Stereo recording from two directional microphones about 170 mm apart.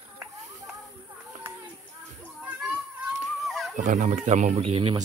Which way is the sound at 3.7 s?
50° right (ahead or behind).